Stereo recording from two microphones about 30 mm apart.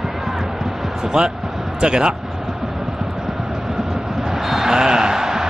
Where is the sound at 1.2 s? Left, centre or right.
Centre.